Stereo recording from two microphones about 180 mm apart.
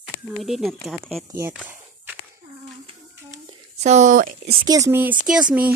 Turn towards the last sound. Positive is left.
turn(degrees=-5)  # may be behind; listen again after turning